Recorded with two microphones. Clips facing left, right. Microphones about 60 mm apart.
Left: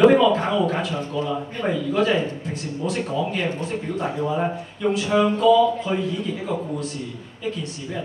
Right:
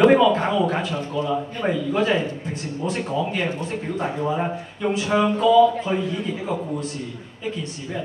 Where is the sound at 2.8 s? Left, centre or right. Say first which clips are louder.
Even; right; by 5.7 s centre.